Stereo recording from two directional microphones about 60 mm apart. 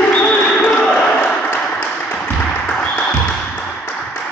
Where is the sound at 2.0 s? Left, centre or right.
Left.